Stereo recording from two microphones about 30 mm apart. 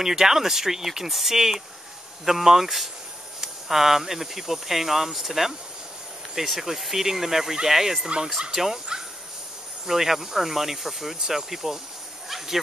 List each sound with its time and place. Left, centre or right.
0.0 s speech: centre
6.6 s speech: centre
12.3 s snake: centre